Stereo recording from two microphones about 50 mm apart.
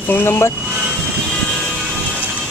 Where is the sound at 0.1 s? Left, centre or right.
Left.